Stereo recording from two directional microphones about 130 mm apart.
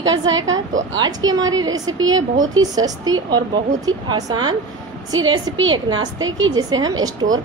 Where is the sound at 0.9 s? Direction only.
30° right (ahead or behind).